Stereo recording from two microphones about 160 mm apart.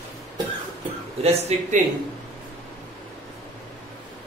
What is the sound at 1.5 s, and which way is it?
Speech, 45° right (ahead or behind).